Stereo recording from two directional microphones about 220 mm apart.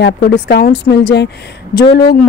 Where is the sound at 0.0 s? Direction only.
45° left (ahead or behind).